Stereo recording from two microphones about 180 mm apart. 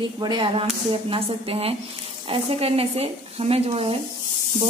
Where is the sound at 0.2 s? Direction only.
25° right (ahead or behind).